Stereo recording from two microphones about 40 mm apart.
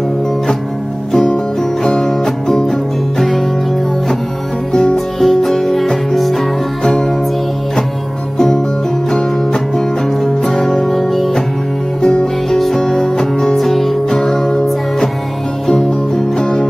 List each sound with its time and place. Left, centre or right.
1.1 s music: centre
4.9 s music: centre
9.1 s music: centre
12.0 s music: left
12.4 s music: centre
14.2 s music: centre
16.3 s music: centre